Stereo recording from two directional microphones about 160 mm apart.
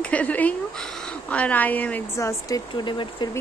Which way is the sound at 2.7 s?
30° left (ahead or behind).